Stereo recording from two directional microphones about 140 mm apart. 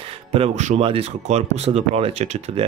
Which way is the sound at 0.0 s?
45° right (ahead or behind).